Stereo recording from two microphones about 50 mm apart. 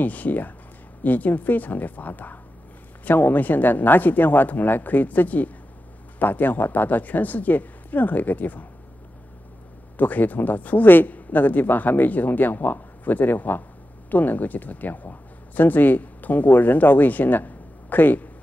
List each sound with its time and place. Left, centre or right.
0.0 s a man's voice: left
9.9 s a man's voice: left